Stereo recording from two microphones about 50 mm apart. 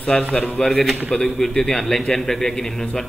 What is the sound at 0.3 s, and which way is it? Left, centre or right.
Speech, centre.